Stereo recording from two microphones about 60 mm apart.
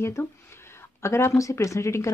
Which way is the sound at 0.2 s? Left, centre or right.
Left.